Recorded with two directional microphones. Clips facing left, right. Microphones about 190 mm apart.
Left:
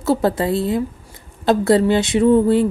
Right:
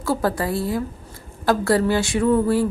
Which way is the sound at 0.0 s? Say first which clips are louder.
Left 5 dB; 25° left (ahead or behind).